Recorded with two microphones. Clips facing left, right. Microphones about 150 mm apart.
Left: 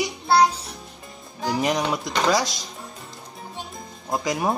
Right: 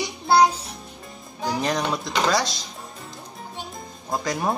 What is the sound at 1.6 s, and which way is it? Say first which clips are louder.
Speech: left 2 dB; 15° left (ahead or behind).